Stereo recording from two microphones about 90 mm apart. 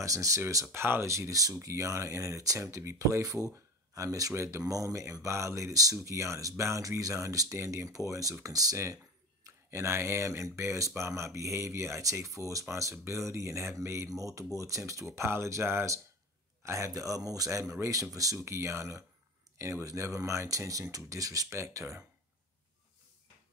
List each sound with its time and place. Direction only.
0.0 s speech: 40° right (ahead or behind)
0.7 s speech: 25° right (ahead or behind)